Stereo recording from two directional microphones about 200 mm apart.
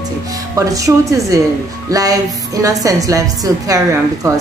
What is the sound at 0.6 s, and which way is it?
A woman's voice, 15° right (ahead or behind).